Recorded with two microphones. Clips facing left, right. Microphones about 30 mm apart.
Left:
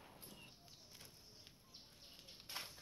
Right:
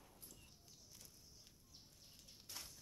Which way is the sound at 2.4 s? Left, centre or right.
Left.